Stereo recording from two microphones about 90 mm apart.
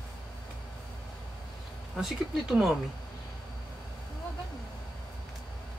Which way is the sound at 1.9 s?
5° right (ahead or behind).